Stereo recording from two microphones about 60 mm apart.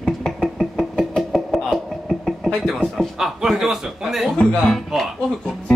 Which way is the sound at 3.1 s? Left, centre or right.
Centre.